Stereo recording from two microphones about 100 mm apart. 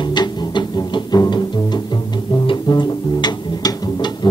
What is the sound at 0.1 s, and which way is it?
Music, 50° left (ahead or behind).